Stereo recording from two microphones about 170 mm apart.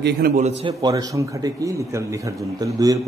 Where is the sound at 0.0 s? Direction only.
60° right (ahead or behind).